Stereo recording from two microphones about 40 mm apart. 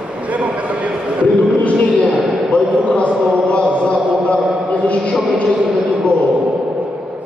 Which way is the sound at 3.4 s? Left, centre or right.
Left.